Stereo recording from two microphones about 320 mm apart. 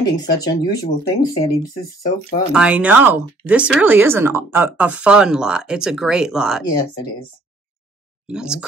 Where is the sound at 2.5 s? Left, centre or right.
Centre.